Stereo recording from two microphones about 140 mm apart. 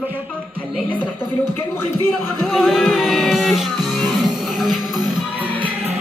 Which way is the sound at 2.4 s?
Centre (ahead or behind).